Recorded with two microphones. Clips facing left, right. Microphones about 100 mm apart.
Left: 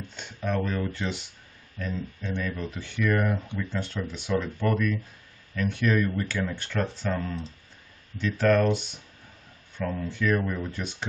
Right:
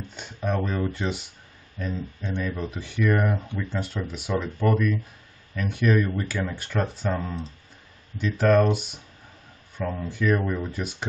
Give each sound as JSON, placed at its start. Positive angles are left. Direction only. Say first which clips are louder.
{"t": 0.1, "sound": "speech", "louder": "right 2 dB", "side_deg": -10}
{"t": 8.2, "sound": "speech", "louder": "right 2 dB", "side_deg": -10}
{"t": 10.6, "sound": "speech", "louder": "right 2 dB", "side_deg": -5}